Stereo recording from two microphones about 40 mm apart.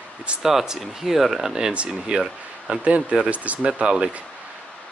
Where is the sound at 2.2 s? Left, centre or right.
Centre.